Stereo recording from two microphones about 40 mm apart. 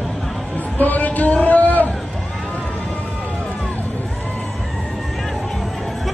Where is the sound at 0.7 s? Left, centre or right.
Left.